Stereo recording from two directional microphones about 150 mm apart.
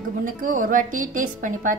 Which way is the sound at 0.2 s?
60° right (ahead or behind).